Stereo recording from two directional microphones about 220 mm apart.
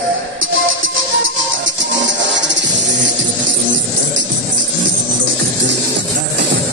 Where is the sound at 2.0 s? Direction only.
55° right (ahead or behind).